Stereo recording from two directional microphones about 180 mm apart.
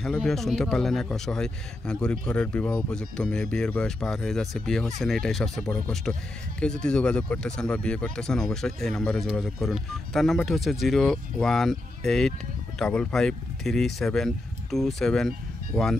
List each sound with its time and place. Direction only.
0.0 s speech: centre (ahead or behind)